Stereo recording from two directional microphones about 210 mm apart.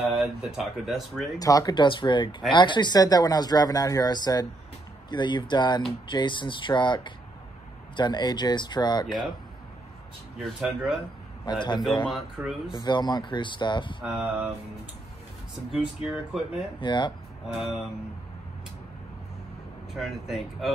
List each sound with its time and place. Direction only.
0.0 s speech: centre (ahead or behind)
1.4 s speech: 15° left (ahead or behind)
10.4 s speech: centre (ahead or behind)
11.4 s speech: 20° left (ahead or behind)
12.1 s speech: centre (ahead or behind)
12.7 s speech: 20° left (ahead or behind)
14.0 s speech: centre (ahead or behind)
15.7 s speech: centre (ahead or behind)
16.8 s speech: 20° left (ahead or behind)
17.5 s speech: centre (ahead or behind)
19.9 s speech: centre (ahead or behind)